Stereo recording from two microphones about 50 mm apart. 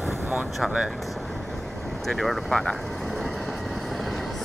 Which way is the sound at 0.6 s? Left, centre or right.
Centre.